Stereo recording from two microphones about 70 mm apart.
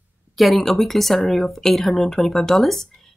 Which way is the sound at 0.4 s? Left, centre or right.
Centre.